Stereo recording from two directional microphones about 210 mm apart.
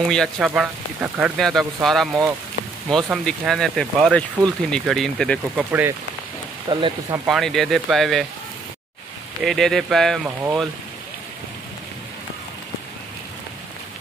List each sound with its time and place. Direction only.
0.1 s speech: 5° left (ahead or behind)
0.5 s speech: 5° right (ahead or behind)
5.7 s speech: 10° right (ahead or behind)
6.7 s speech: 20° right (ahead or behind)
7.2 s speech: centre (ahead or behind)
9.4 s speech: centre (ahead or behind)
10.2 s speech: 10° right (ahead or behind)